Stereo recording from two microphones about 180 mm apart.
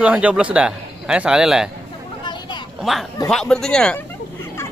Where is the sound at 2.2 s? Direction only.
25° left (ahead or behind).